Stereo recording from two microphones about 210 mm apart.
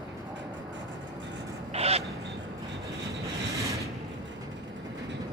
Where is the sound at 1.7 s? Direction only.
30° right (ahead or behind).